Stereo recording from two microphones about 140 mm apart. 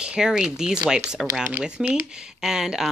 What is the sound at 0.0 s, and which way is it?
Speech, 5° right (ahead or behind).